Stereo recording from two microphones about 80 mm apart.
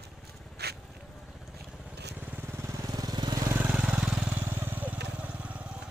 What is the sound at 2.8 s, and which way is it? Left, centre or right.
Vehicle, right.